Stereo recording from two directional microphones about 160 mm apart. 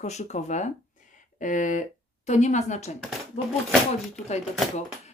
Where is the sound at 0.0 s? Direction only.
45° left (ahead or behind).